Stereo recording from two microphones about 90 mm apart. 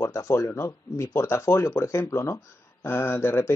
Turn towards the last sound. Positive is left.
turn(degrees=25)  # may be behind; listen again after turning